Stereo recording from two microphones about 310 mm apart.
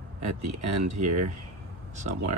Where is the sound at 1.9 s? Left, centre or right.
Right.